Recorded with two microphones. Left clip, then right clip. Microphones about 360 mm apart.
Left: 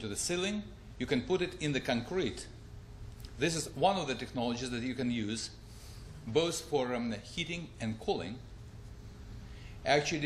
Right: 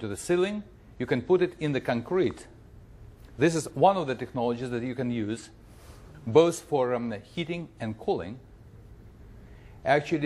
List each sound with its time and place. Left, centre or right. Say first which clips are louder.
0.0 s speech: right 8 dB; right
3.3 s speech: right 9 dB; right
6.3 s speech: right 9 dB; right
9.8 s speech: right 5 dB; right